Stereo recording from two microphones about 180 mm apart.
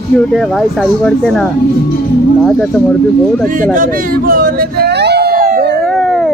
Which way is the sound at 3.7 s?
50° right (ahead or behind).